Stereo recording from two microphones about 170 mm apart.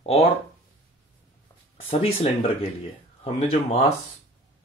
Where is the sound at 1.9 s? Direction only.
35° left (ahead or behind).